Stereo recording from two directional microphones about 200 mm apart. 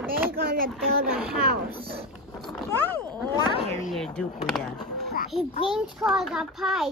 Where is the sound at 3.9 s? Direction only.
5° left (ahead or behind).